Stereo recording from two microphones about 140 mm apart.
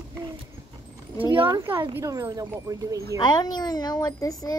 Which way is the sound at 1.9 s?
20° right (ahead or behind).